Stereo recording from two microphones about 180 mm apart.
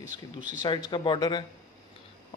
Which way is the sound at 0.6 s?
25° left (ahead or behind).